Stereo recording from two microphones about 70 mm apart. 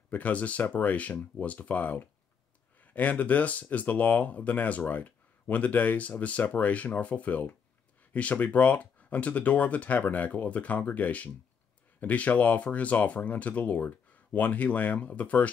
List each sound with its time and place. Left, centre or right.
0.1 s speech: left